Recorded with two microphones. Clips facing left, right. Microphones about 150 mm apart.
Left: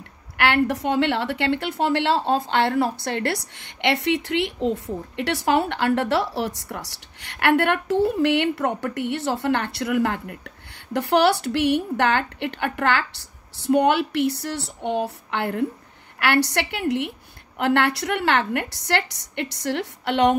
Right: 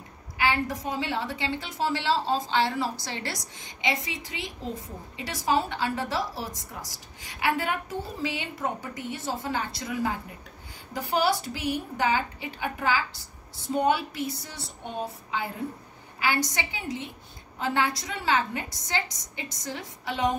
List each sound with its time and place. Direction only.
0.4 s a woman's voice: 70° left (ahead or behind)